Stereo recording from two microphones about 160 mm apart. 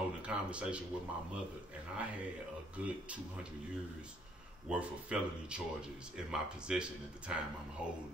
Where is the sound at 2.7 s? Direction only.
10° right (ahead or behind).